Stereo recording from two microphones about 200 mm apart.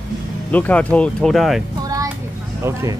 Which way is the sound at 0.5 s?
10° left (ahead or behind).